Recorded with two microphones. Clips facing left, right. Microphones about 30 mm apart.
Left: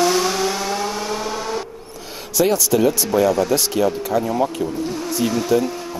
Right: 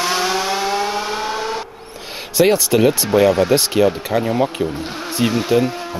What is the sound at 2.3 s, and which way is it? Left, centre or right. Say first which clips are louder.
Speech: right 3 dB; right.